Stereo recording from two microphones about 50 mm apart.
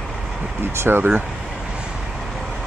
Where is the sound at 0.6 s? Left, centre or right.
Right.